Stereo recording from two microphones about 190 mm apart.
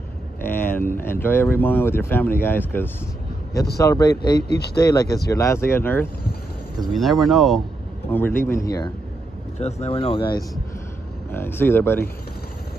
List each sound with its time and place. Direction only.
0.4 s vehicle: 10° left (ahead or behind)
0.9 s speech: 10° left (ahead or behind)
4.4 s speech: 60° left (ahead or behind)
4.8 s speech: 20° left (ahead or behind)
6.8 s speech: centre (ahead or behind); by 8.9 s 20° left (ahead or behind)
9.6 s speech: 35° left (ahead or behind)
11.3 s speech: 10° left (ahead or behind)